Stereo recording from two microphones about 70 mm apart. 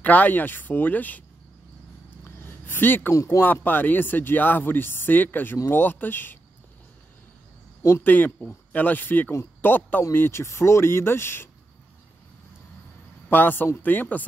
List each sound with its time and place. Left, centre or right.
0.0 s speech: left
2.6 s speech: left
3.1 s speech: left
3.6 s speech: left
8.0 s speech: left
13.3 s speech: left